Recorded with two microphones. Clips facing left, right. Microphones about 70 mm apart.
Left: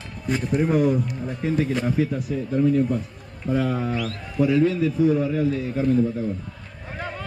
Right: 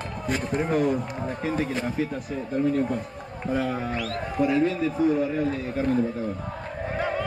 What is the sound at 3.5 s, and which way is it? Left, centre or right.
Speech, right.